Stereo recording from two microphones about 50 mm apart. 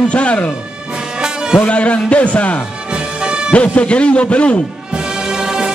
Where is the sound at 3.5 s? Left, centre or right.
Left.